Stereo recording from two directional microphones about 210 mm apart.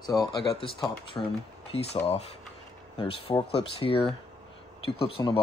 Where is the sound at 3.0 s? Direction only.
25° left (ahead or behind).